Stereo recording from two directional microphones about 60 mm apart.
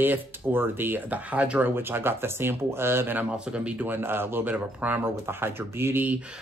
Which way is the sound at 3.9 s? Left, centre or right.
Right.